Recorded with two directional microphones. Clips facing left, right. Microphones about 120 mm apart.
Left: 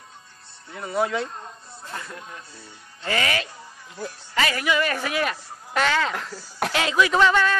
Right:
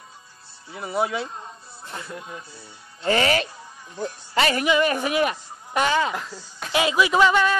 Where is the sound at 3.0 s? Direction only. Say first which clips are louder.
Right 5 dB; 30° right (ahead or behind).